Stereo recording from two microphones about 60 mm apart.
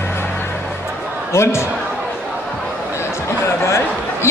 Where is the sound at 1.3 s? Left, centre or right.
Left.